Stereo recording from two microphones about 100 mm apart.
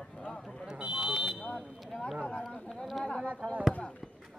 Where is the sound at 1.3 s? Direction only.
10° left (ahead or behind).